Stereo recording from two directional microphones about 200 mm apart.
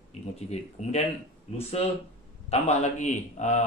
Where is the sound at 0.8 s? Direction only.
35° left (ahead or behind).